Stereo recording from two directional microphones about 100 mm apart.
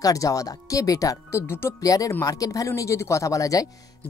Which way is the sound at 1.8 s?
35° left (ahead or behind).